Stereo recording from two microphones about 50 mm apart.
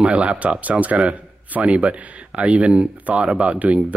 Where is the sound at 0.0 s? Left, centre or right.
Right.